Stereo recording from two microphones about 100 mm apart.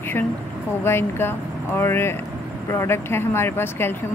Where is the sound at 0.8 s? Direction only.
25° left (ahead or behind).